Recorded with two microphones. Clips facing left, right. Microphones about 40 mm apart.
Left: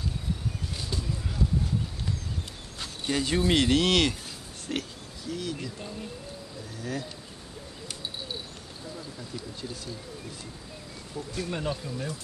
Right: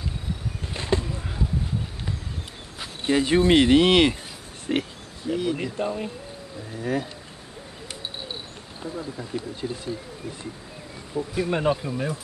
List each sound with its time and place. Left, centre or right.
0.7 s a sound: right
1.0 s a sound: right
3.0 s speech: right
5.8 s speech: right
6.7 s speech: right
8.8 s speech: right
11.1 s speech: right